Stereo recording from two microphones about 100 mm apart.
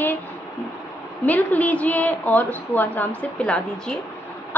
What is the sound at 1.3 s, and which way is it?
A woman's voice, 15° left (ahead or behind).